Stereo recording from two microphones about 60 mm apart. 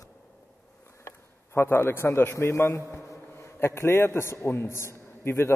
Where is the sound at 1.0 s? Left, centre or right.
Left.